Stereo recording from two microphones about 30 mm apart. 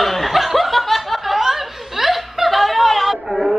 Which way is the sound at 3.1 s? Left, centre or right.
Centre.